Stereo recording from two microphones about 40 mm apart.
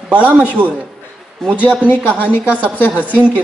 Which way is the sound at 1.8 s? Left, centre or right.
Left.